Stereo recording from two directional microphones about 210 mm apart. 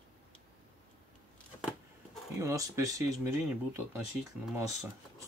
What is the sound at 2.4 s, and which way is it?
Speech, 15° right (ahead or behind).